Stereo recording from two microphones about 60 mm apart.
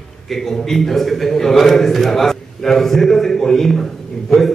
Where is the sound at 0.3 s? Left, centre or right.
Centre.